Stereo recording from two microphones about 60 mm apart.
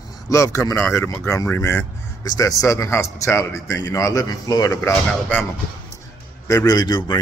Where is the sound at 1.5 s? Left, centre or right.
Left.